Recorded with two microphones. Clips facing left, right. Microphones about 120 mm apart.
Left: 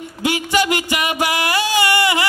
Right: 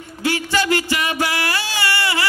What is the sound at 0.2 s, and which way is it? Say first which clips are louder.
Music: left 2 dB; 15° left (ahead or behind).